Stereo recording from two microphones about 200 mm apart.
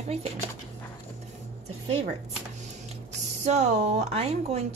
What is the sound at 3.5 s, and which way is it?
A woman's voice, 35° right (ahead or behind).